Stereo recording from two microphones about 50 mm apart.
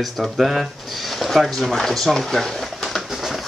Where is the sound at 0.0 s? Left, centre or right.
Centre.